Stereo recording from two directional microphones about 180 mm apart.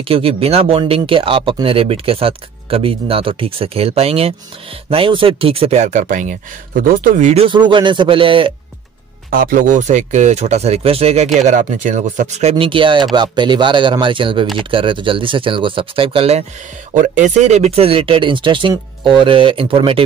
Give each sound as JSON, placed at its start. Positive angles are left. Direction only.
{"t": 0.0, "sound": "speech", "side_deg": -30}
{"t": 7.4, "sound": "speech", "side_deg": -25}
{"t": 9.3, "sound": "speech", "side_deg": -50}